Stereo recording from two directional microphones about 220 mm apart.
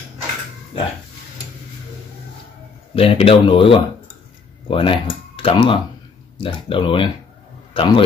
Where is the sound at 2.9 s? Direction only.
25° left (ahead or behind).